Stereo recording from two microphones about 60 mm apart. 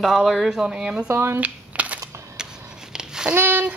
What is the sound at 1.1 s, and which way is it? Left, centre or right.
Speech, right.